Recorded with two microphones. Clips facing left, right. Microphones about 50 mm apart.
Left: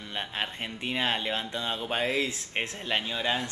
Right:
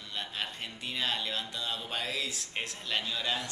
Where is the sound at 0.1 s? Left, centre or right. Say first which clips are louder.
Left 4 dB; left.